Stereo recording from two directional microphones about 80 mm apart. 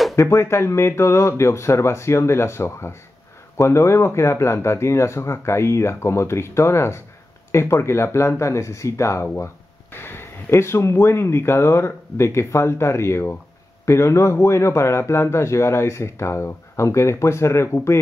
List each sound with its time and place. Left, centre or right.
0.1 s a man's voice: left